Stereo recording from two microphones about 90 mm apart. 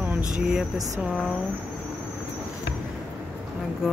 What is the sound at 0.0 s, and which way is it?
Vehicle, 20° right (ahead or behind).